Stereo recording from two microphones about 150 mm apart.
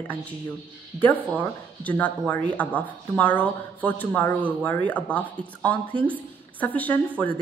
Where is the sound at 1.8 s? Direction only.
10° left (ahead or behind).